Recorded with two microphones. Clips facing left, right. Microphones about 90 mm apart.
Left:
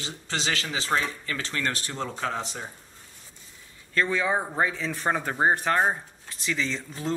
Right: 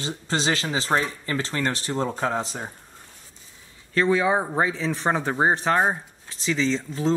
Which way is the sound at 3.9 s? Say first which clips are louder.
Right 5 dB; 20° right (ahead or behind).